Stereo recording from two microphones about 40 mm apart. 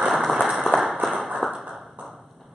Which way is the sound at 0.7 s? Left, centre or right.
Left.